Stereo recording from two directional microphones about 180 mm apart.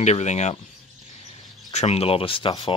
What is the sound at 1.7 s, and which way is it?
Speech, 35° left (ahead or behind).